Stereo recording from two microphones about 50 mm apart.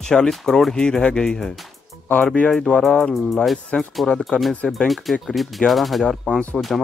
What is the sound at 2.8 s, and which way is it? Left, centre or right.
Speech, centre.